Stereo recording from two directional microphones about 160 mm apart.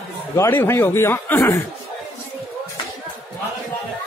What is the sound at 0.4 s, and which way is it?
A man's voice, 15° left (ahead or behind).